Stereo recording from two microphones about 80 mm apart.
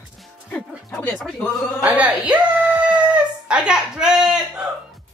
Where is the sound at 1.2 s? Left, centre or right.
Centre.